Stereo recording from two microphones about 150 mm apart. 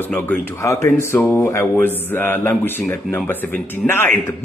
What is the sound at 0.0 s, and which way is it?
Speech, 15° left (ahead or behind).